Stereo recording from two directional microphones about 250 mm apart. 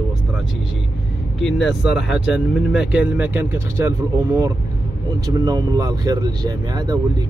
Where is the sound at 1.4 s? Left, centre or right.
Centre.